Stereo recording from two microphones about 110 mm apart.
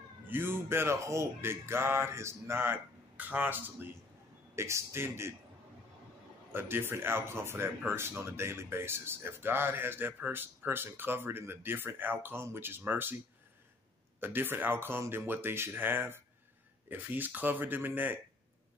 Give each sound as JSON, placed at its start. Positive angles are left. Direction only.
{"t": 0.3, "sound": "speech", "side_deg": -20}
{"t": 6.5, "sound": "speech", "side_deg": -20}
{"t": 14.2, "sound": "speech", "side_deg": -20}